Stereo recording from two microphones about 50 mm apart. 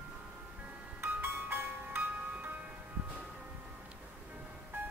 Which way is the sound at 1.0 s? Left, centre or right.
Right.